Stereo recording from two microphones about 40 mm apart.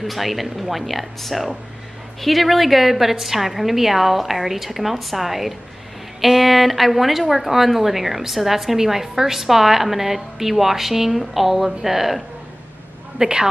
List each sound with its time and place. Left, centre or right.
0.0 s a woman's voice: centre
13.2 s a woman's voice: centre